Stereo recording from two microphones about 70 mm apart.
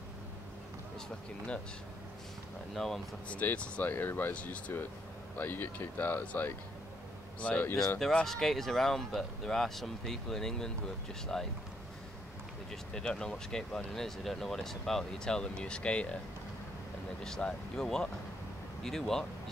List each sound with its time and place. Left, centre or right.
2.7 s speech: centre
3.3 s speech: centre
7.3 s speech: centre
8.0 s speech: centre
12.9 s speech: centre
17.2 s speech: centre